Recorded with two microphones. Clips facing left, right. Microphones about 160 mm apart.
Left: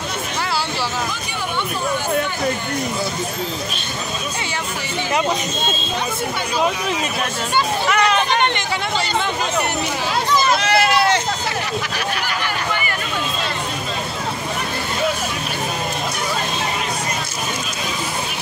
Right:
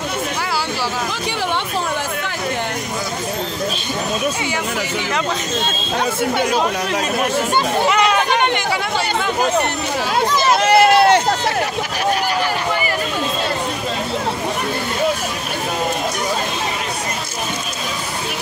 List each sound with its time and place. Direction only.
7.9 s hubbub: 10° right (ahead or behind)
10.6 s run: 50° right (ahead or behind)